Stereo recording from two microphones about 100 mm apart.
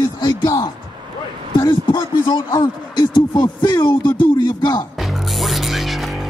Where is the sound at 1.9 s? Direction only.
55° left (ahead or behind).